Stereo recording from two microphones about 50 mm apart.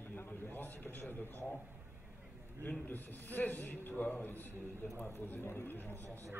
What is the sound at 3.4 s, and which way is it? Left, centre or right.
A man's voice, left.